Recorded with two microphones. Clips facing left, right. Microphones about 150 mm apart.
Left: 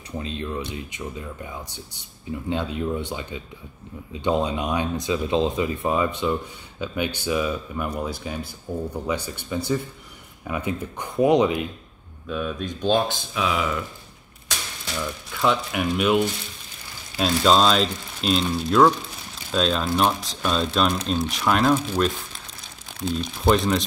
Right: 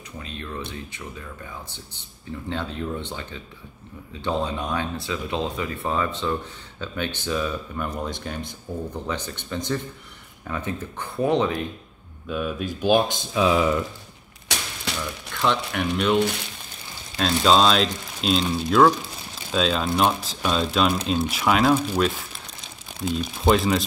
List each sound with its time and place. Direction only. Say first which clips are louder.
0.2 s speech: left 4 dB; 20° left (ahead or behind)
12.3 s speech: right 1 dB; 5° right (ahead or behind); by 13.7 s 30° right (ahead or behind)
15.3 s speech: left 1 dB; 5° left (ahead or behind)
17.2 s speech: even; centre (ahead or behind)
23.5 s speech: even; centre (ahead or behind)